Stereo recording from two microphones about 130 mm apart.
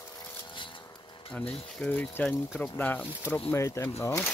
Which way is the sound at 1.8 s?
10° left (ahead or behind).